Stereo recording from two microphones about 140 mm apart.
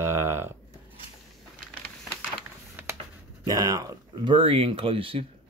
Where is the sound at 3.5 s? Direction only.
25° right (ahead or behind); by 5.2 s 40° right (ahead or behind).